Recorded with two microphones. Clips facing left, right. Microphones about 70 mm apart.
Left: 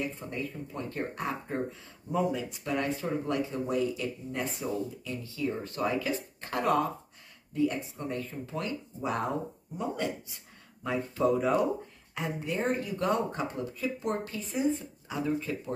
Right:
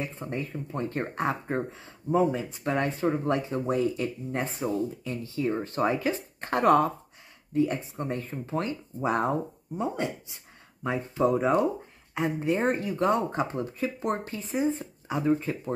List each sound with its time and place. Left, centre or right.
0.0 s speech: right